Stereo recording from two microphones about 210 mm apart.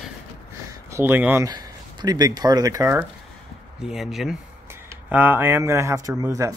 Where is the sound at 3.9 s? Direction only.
Centre (ahead or behind).